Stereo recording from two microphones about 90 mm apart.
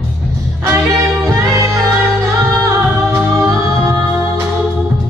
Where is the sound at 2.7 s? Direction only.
30° right (ahead or behind).